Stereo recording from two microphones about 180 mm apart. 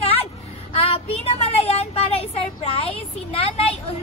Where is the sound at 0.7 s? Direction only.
35° left (ahead or behind).